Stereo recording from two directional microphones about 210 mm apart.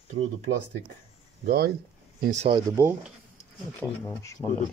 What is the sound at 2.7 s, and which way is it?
Speech, 10° right (ahead or behind).